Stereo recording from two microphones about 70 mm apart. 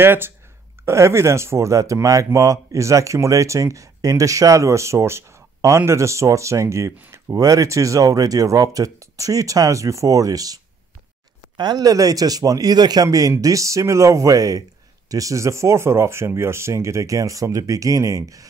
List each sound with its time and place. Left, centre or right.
0.0 s speech: right
0.8 s speech: right
11.5 s speech: right
11.8 s a man's voice: right